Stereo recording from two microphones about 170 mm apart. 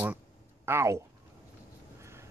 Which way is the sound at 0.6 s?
15° right (ahead or behind).